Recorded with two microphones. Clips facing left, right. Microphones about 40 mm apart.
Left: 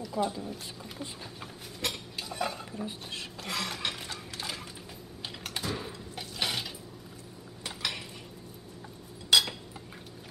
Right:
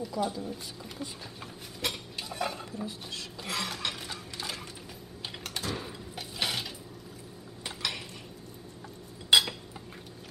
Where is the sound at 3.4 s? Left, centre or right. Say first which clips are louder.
Even; centre.